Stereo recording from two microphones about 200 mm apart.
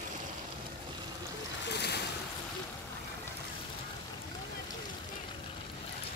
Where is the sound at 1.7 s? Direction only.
55° left (ahead or behind).